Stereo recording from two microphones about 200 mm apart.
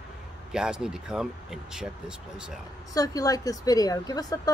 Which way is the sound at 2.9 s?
15° left (ahead or behind).